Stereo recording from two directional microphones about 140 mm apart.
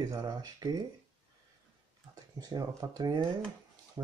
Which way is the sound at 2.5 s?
25° right (ahead or behind).